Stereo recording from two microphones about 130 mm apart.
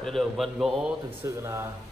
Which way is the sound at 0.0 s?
Centre (ahead or behind).